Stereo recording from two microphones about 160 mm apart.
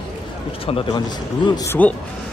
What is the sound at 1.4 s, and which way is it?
Speech, 25° left (ahead or behind).